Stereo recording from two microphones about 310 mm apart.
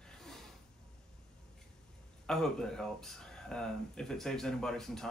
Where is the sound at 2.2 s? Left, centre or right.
Centre.